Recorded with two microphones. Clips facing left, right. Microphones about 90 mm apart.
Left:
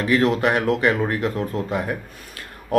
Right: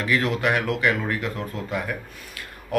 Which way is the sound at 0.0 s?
30° left (ahead or behind).